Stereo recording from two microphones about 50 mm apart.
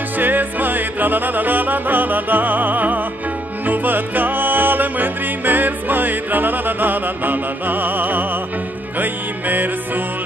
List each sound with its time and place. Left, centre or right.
0.2 s music: right